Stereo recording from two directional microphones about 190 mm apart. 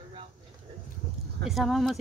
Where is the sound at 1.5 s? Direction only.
Centre (ahead or behind).